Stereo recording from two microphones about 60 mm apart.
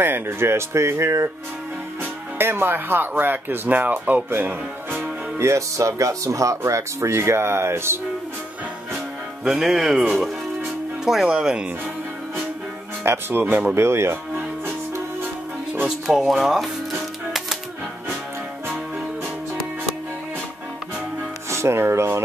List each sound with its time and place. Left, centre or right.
0.0 s speech: right
2.3 s speech: right
5.4 s speech: right
9.4 s speech: centre
11.1 s speech: centre
13.0 s speech: right
13.7 s speech: right
16.1 s speech: centre
21.5 s speech: right